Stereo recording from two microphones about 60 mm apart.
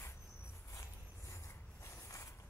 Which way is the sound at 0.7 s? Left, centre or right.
Left.